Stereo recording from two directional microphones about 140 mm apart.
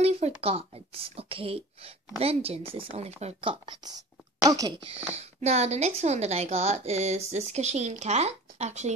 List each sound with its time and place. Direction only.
0.0 s a woman's voice: 50° right (ahead or behind); by 4.8 s 25° right (ahead or behind)
4.8 s a woman's voice: 45° right (ahead or behind)